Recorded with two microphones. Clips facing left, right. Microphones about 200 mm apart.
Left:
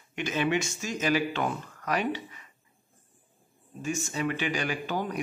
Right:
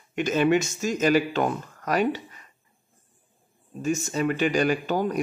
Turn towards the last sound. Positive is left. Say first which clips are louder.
# right 7 dB
turn(degrees=-45)  # may be behind; listen again after turning